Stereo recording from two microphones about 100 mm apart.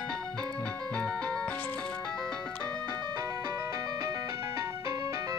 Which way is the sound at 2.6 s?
40° right (ahead or behind).